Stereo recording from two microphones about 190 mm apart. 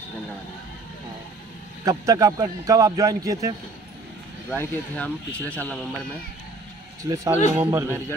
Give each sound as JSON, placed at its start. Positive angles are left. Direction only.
{"t": 1.9, "sound": "a man's voice", "side_deg": -20}
{"t": 4.5, "sound": "speech", "side_deg": 5}
{"t": 7.0, "sound": "a man's voice", "side_deg": -15}